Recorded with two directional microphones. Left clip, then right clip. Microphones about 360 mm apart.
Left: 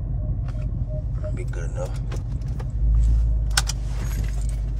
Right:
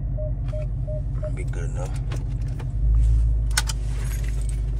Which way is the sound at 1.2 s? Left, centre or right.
Centre.